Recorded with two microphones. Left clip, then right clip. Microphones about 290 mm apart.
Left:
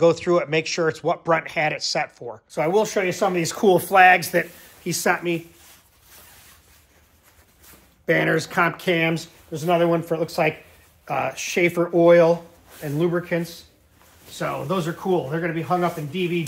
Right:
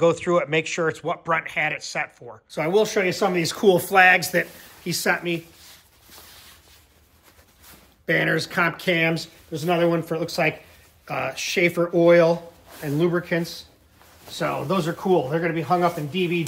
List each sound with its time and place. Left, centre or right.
0.0 s speech: centre
8.1 s speech: centre